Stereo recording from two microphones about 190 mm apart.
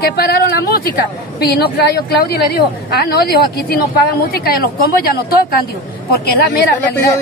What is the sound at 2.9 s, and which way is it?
Speech, 55° left (ahead or behind).